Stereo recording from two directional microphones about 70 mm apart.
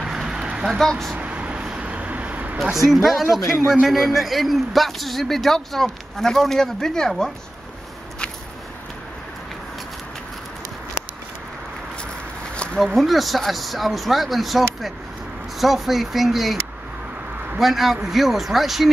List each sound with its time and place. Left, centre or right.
0.0 s a sound: centre
0.7 s speech: centre
1.1 s vehicle: centre
2.9 s speech: centre
12.8 s speech: centre
17.6 s speech: centre